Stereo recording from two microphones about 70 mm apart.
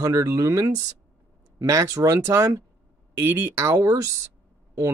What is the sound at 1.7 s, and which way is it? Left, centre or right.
Speech, right.